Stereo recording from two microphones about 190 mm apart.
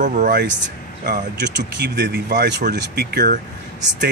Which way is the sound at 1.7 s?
60° right (ahead or behind).